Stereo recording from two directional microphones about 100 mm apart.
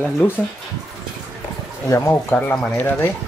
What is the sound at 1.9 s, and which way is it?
Speech, 30° left (ahead or behind).